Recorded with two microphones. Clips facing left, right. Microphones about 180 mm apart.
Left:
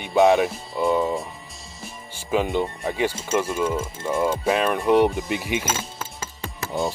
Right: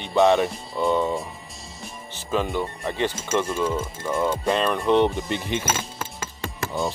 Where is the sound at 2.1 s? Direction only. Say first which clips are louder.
Left 3 dB; 15° left (ahead or behind).